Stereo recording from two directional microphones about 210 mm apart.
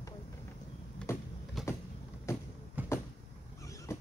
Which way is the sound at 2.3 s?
15° left (ahead or behind).